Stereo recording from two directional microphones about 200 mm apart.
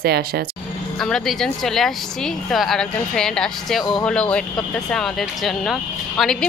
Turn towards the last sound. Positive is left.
turn(degrees=0)  # may be behind; listen again after turning